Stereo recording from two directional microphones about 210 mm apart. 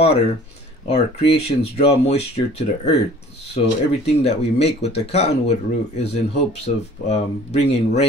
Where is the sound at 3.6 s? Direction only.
30° left (ahead or behind).